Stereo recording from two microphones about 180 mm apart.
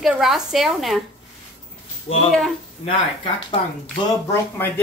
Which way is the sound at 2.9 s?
30° left (ahead or behind).